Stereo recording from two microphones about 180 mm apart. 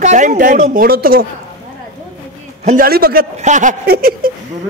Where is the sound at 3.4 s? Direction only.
45° right (ahead or behind).